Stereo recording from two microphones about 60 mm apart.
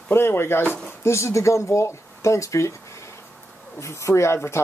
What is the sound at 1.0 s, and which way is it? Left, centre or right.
Speech, left.